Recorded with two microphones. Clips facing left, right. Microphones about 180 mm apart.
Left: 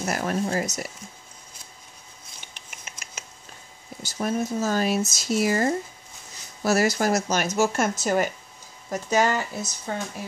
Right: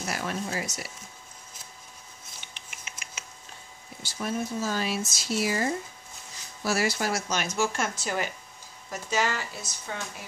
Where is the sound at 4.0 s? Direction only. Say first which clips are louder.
Left 5 dB; 45° left (ahead or behind).